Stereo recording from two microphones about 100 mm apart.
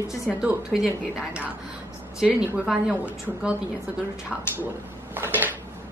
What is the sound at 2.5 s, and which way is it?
A woman's voice, 10° right (ahead or behind).